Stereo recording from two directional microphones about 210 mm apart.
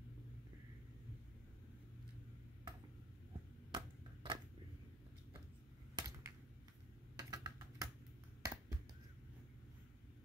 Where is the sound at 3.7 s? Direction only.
20° right (ahead or behind).